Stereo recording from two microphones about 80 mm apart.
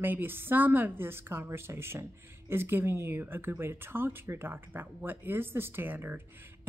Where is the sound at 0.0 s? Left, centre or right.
Right.